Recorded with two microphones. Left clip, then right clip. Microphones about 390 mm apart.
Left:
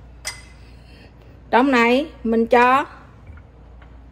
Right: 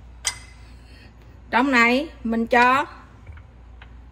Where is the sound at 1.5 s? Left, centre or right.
Centre.